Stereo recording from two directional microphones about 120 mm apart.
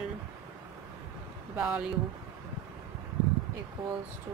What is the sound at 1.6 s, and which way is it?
Speech, 10° right (ahead or behind).